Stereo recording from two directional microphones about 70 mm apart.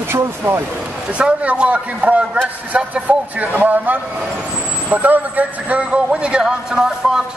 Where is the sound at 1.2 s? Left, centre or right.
Centre.